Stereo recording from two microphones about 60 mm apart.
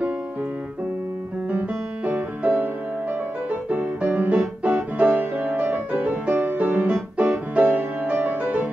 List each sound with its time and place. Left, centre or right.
2.0 s music: right
3.7 s music: right